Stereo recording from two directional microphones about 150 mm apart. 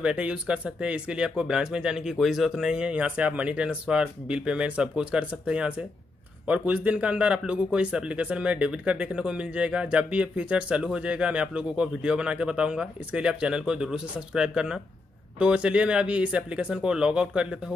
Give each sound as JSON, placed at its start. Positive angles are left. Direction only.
{"t": 0.0, "sound": "speech", "side_deg": -5}